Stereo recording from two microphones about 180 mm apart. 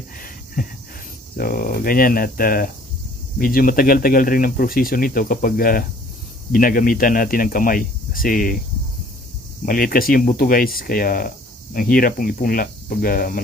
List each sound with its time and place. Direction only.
0.6 s speech: 50° left (ahead or behind)
9.7 s speech: 55° left (ahead or behind)